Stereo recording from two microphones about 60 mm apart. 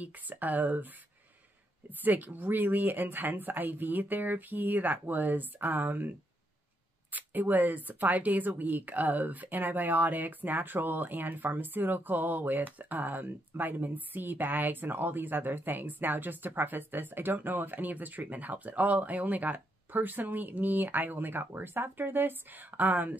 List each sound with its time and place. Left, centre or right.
0.0 s speech: right
2.0 s speech: right